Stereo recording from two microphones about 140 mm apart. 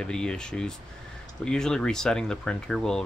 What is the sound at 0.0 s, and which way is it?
Speech, 5° left (ahead or behind).